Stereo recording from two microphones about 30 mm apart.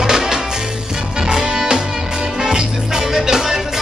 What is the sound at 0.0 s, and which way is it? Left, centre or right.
Music, right.